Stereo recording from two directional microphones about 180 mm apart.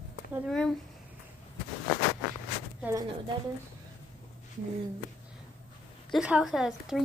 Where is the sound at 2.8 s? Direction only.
20° right (ahead or behind).